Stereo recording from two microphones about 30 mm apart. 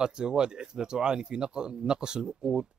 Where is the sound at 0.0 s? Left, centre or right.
Right.